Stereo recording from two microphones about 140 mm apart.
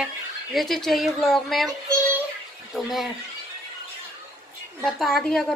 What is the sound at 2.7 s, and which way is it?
Speech, centre (ahead or behind).